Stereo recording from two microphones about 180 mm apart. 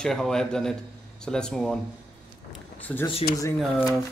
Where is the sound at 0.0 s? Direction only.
5° left (ahead or behind).